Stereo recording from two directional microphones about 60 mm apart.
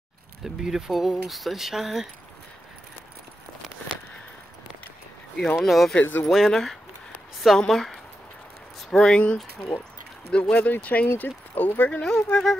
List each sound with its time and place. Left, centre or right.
0.4 s speech: centre
5.6 s speech: centre
5.9 s speech: left
6.2 s speech: centre
8.9 s speech: centre; by 11.7 s left
11.9 s speech: centre